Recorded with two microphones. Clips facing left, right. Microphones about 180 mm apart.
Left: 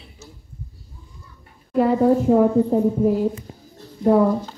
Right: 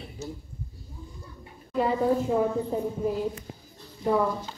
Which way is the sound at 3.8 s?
55° left (ahead or behind).